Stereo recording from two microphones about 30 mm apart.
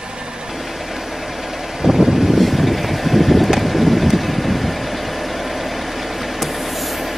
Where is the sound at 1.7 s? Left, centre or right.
Centre.